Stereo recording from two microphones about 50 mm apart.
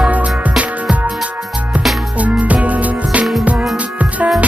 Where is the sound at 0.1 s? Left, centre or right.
Right.